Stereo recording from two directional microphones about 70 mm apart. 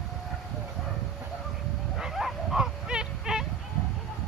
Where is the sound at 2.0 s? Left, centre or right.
Centre.